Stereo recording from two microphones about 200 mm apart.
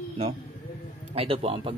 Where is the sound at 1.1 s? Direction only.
30° right (ahead or behind).